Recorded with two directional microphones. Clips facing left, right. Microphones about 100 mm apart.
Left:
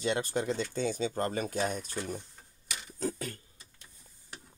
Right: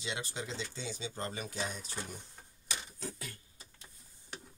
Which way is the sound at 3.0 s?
45° left (ahead or behind).